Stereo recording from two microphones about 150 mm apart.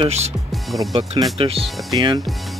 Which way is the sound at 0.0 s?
45° right (ahead or behind).